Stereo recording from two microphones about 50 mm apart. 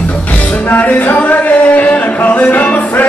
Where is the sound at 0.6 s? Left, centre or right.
Left.